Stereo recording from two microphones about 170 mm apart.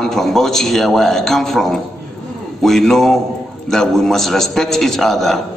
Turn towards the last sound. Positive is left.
turn(degrees=0)  # may be behind; listen again after turning